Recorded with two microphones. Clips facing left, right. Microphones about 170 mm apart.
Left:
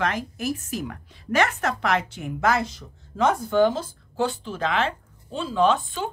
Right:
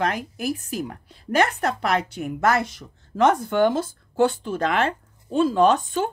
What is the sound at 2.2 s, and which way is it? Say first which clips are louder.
Speech: right 3 dB; 45° right (ahead or behind).